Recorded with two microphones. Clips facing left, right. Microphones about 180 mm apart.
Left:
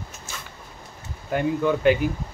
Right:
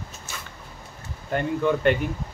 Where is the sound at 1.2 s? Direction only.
5° left (ahead or behind).